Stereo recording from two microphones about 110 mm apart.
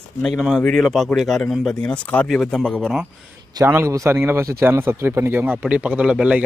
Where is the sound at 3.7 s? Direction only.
25° right (ahead or behind).